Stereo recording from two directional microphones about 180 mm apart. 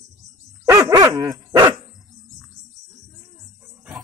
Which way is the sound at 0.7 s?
20° right (ahead or behind).